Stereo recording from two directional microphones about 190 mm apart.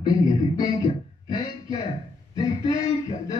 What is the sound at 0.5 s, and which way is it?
Music, 20° left (ahead or behind).